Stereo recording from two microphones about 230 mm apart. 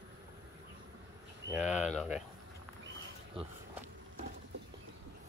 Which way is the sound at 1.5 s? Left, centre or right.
Centre.